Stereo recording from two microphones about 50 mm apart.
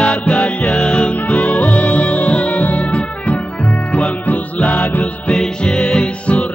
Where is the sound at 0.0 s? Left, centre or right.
Left.